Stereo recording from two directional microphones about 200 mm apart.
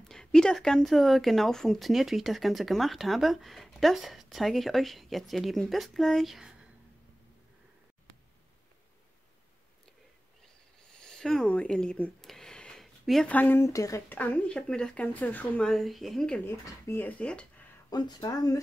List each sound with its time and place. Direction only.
0.0 s speech: 5° left (ahead or behind)
10.9 s speech: 5° left (ahead or behind)
17.8 s speech: 20° left (ahead or behind)